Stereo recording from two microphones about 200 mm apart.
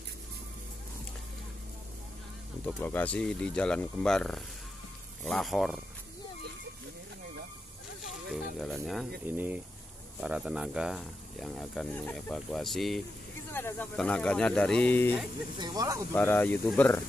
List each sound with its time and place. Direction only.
2.6 s speech: 10° left (ahead or behind)
8.3 s speech: centre (ahead or behind)
13.5 s speech: 10° left (ahead or behind)
15.6 s speech: 20° right (ahead or behind)
16.1 s speech: 10° left (ahead or behind)